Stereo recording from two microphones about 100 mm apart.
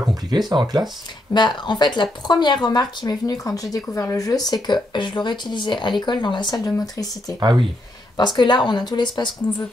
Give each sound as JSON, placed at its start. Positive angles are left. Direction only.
{"t": 0.0, "sound": "a sound", "side_deg": -35}
{"t": 0.5, "sound": "speech", "side_deg": -40}
{"t": 1.3, "sound": "speech", "side_deg": 50}
{"t": 7.3, "sound": "speech", "side_deg": -45}
{"t": 8.2, "sound": "speech", "side_deg": 50}